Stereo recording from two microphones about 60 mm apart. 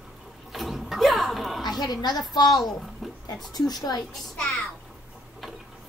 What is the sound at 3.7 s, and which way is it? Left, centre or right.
Speech, left.